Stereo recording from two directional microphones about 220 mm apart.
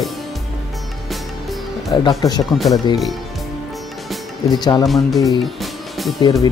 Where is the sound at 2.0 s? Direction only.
20° left (ahead or behind).